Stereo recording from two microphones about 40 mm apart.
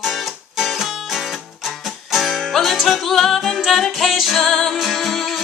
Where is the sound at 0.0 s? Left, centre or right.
Centre.